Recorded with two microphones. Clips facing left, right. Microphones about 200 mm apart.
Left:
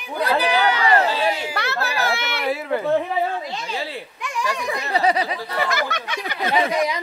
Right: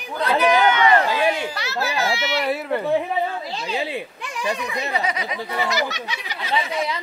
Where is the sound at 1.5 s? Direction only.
55° left (ahead or behind).